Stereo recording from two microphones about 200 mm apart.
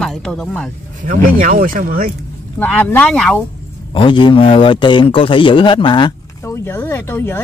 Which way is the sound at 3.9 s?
25° left (ahead or behind).